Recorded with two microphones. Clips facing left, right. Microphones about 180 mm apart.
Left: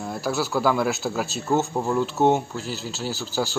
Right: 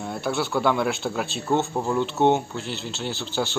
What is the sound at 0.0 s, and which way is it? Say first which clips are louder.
Speech: even; centre (ahead or behind).